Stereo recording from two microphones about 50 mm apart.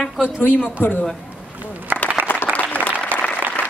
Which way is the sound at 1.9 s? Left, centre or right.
Right.